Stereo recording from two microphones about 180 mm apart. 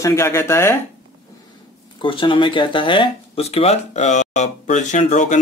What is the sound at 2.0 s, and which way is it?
Speech, 30° left (ahead or behind).